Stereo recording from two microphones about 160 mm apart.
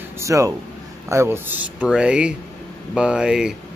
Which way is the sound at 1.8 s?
5° right (ahead or behind).